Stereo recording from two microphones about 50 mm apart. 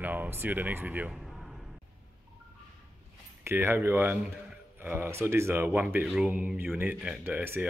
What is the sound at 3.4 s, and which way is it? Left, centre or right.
Speech, right.